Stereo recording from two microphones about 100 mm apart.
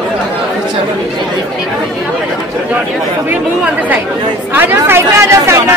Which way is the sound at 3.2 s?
15° right (ahead or behind).